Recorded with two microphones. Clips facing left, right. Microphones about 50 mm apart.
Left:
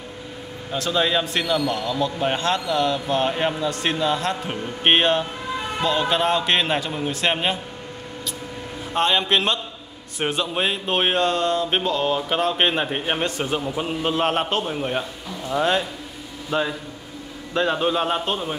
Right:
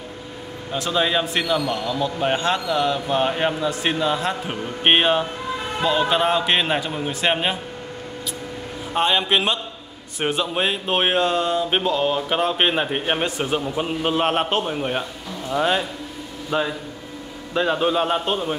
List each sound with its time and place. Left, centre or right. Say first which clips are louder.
0.7 s a man's voice: even; centre
8.9 s a man's voice: even; centre